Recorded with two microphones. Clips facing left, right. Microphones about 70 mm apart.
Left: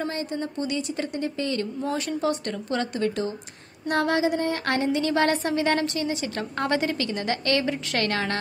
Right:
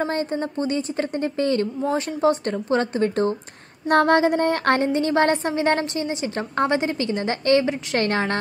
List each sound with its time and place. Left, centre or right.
0.0 s a woman's voice: right
3.9 s a woman's voice: right